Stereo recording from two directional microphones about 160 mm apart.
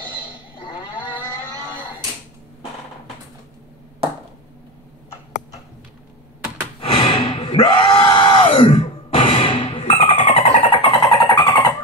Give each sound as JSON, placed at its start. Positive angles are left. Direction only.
{"t": 0.3, "sound": "cattle", "side_deg": 30}
{"t": 6.8, "sound": "screaming", "side_deg": 35}